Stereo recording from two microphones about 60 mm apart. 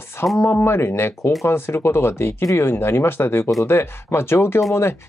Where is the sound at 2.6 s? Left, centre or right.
Left.